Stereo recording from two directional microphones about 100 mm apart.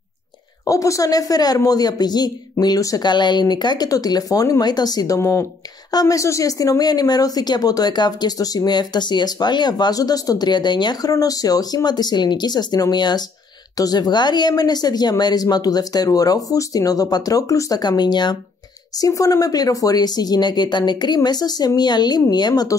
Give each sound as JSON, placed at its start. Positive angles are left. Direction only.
{"t": 0.7, "sound": "a woman's voice", "side_deg": 35}